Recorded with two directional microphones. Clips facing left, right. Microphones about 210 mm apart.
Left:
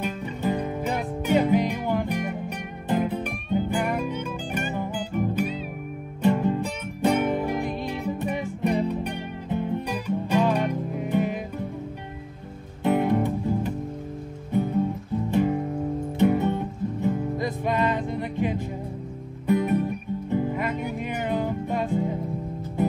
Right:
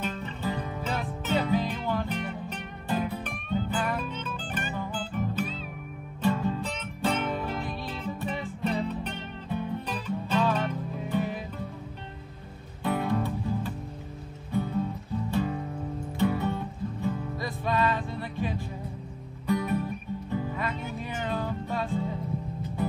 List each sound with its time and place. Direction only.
0.0 s music: 15° left (ahead or behind)
12.8 s music: 20° left (ahead or behind)